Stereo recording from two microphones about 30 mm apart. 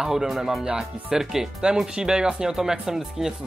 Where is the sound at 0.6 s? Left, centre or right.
Right.